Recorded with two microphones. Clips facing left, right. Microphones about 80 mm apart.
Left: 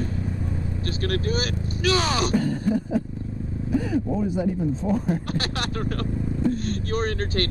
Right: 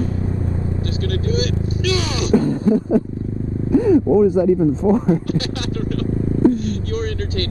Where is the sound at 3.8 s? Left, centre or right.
Right.